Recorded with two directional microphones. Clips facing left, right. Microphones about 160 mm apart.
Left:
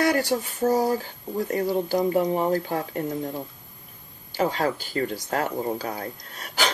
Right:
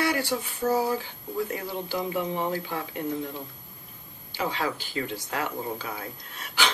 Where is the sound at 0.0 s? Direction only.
45° left (ahead or behind).